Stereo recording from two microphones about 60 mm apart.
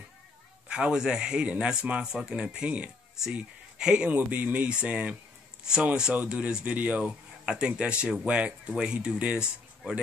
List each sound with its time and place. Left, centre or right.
0.7 s speech: centre
6.1 s speech: centre